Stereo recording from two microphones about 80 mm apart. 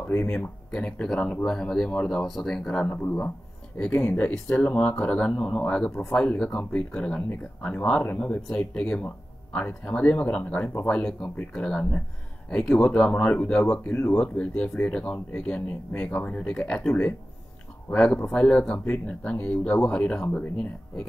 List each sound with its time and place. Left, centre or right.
0.1 s speech: centre
2.2 s speech: centre
4.0 s speech: left
17.9 s speech: centre